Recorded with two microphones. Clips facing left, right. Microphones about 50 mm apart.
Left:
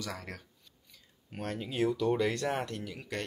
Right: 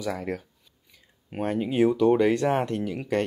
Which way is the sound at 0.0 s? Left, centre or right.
Centre.